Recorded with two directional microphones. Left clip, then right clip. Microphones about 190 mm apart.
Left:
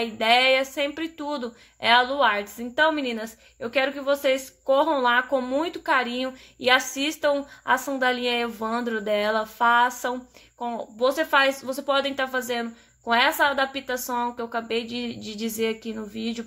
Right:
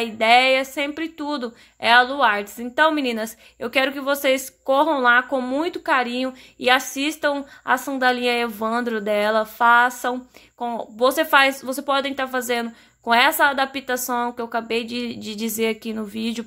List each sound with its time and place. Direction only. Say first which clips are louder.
0.0 s speech: right 4 dB; 25° right (ahead or behind)